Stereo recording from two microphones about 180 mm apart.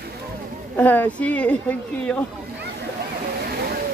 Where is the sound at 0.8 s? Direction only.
10° left (ahead or behind).